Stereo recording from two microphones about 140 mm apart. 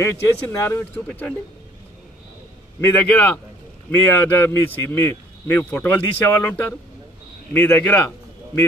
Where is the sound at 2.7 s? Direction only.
15° left (ahead or behind).